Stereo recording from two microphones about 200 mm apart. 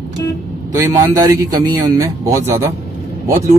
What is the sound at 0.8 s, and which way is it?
Speech, 20° right (ahead or behind).